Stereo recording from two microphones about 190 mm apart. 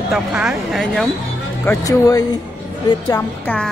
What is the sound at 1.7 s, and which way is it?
Speech, 20° left (ahead or behind).